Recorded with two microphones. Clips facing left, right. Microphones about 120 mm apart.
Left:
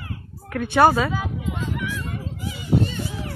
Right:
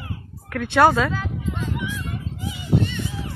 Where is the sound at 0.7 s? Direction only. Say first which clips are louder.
Even; 10° left (ahead or behind).